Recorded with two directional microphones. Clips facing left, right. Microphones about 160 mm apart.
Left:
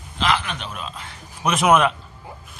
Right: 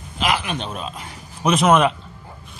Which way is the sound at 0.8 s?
15° right (ahead or behind).